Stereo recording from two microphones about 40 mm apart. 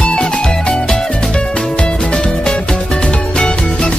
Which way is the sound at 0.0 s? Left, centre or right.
Centre.